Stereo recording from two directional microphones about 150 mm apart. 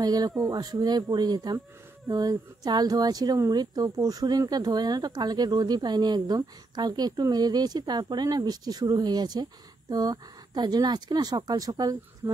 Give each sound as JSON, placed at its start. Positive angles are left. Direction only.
{"t": 0.0, "sound": "speech", "side_deg": -25}